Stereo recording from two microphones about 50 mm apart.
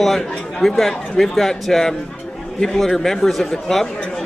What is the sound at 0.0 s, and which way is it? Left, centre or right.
A man's voice, centre.